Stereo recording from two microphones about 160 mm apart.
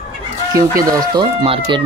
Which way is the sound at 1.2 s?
30° right (ahead or behind).